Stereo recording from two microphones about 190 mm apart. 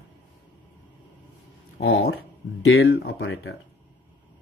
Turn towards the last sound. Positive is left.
turn(degrees=65)  # may be behind; listen again after turning